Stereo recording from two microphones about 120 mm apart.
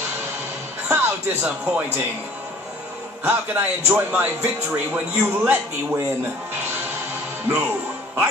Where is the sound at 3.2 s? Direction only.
15° right (ahead or behind).